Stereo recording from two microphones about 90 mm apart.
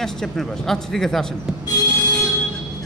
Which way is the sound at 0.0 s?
5° left (ahead or behind).